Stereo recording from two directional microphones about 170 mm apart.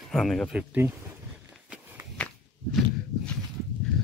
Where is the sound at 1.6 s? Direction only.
10° right (ahead or behind).